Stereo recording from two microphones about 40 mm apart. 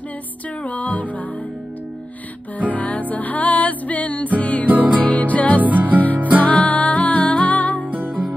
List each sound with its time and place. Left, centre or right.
0.7 s music: left
2.7 s music: left
4.6 s music: right
5.0 s music: left
5.6 s music: right
5.9 s music: left
7.8 s music: right